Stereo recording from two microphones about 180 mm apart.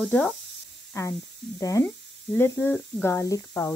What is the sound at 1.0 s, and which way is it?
Speech, 20° left (ahead or behind).